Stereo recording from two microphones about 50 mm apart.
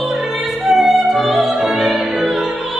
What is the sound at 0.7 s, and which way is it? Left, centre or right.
Opera, centre.